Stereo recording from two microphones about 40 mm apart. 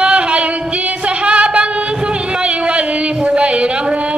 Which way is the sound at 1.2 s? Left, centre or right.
Right.